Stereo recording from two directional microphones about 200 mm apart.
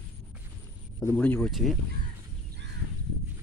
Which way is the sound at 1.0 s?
10° left (ahead or behind).